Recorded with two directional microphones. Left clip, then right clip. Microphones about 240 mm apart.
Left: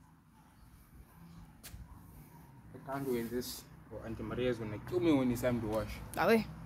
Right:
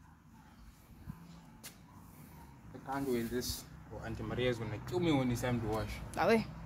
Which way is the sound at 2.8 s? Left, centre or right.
Centre.